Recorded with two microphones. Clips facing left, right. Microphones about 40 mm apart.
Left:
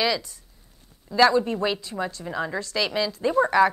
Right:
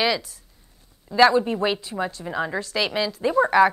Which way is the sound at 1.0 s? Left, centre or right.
Centre.